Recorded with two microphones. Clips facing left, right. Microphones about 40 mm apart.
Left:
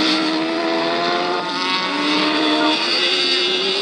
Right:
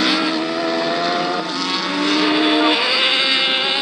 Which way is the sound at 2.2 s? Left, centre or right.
Centre.